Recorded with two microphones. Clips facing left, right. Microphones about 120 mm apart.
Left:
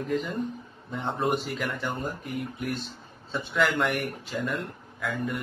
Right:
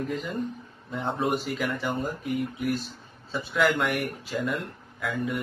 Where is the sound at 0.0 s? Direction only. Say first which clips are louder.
Left 1 dB; centre (ahead or behind).